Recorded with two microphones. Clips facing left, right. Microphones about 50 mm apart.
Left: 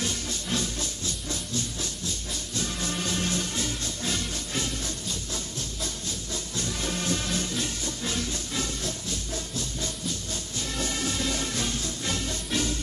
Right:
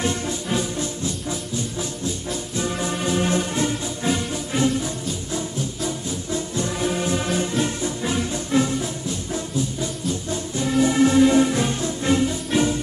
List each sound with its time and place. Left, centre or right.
0.0 s music: right